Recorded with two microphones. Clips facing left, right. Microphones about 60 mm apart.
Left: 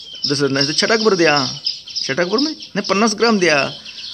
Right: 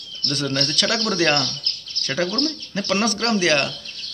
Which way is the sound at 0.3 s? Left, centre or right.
Left.